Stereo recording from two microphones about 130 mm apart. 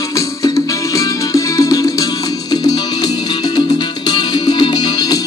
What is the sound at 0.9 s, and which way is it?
Music, 25° left (ahead or behind).